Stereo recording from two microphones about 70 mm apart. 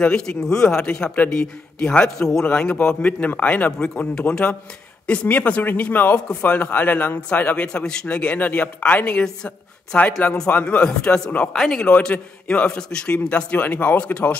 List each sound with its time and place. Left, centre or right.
0.0 s a man's voice: centre
2.4 s a man's voice: centre